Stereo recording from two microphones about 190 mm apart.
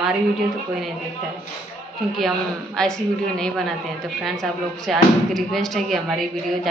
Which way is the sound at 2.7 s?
5° left (ahead or behind).